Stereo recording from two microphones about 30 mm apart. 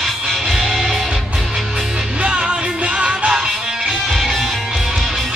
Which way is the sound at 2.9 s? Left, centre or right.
Right.